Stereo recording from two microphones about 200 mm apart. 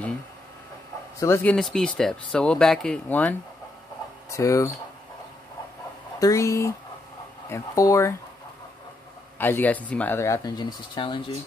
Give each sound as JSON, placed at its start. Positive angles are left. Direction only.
{"t": 1.2, "sound": "speech", "side_deg": 10}
{"t": 6.1, "sound": "speech", "side_deg": 15}
{"t": 9.4, "sound": "speech", "side_deg": 10}